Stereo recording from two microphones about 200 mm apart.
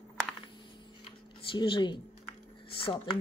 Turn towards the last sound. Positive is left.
turn(degrees=25)  # may be behind; listen again after turning